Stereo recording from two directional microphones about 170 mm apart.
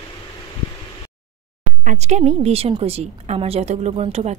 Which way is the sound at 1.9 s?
45° right (ahead or behind).